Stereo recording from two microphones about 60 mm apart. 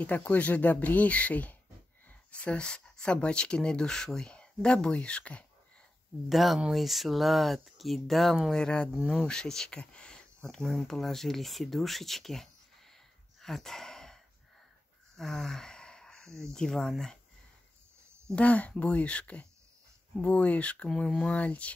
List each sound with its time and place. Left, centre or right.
0.0 s speech: left
6.2 s speech: centre
8.5 s speech: centre
13.4 s a sound: centre
16.5 s speech: centre
18.3 s speech: left
21.4 s speech: left